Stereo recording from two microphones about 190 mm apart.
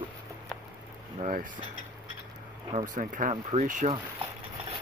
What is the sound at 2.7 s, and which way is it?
Speech, 40° right (ahead or behind).